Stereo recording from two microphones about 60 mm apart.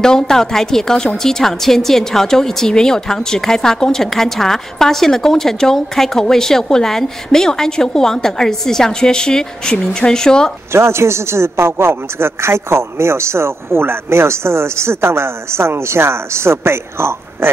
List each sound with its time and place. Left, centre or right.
0.0 s a woman's voice: centre
10.7 s a man's voice: right